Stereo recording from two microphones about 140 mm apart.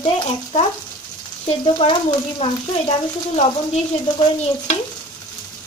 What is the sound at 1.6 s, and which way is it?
Speech, 35° left (ahead or behind).